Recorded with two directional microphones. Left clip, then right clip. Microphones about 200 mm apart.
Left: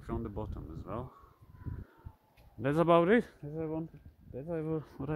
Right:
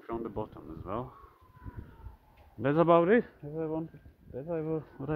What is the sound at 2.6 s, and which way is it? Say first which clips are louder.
Speech: right 3 dB; 15° left (ahead or behind).